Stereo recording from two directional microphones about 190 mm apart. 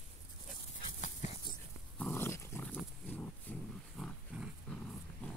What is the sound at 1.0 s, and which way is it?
Dog, 35° left (ahead or behind).